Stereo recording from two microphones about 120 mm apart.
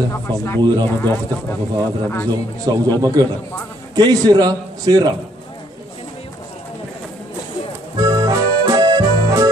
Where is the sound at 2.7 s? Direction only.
35° right (ahead or behind).